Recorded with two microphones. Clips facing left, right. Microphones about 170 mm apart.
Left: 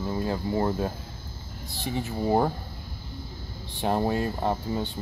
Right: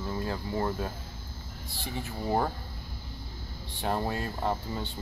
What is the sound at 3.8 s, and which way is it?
Speech, 20° left (ahead or behind).